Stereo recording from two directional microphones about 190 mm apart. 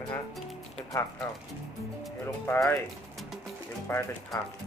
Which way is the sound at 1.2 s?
20° left (ahead or behind).